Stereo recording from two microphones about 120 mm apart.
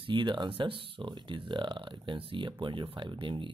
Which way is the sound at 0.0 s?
40° right (ahead or behind).